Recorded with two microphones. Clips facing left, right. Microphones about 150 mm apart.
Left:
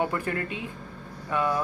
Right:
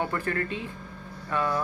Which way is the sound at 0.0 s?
15° left (ahead or behind).